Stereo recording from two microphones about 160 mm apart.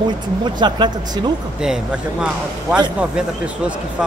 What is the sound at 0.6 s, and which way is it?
Speech, 30° right (ahead or behind).